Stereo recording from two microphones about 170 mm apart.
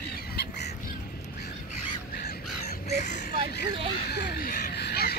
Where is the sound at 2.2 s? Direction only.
65° left (ahead or behind).